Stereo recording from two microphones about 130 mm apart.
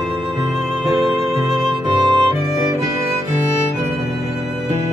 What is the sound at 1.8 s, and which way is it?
Music, 35° right (ahead or behind).